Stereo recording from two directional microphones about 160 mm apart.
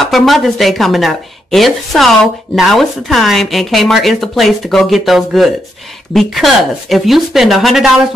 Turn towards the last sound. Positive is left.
turn(degrees=0)  # may be behind; listen again after turning